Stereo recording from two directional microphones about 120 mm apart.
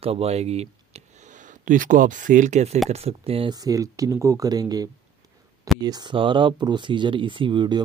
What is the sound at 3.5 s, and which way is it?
Speech, 30° right (ahead or behind).